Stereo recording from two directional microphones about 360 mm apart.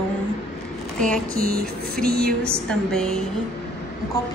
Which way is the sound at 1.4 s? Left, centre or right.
Right.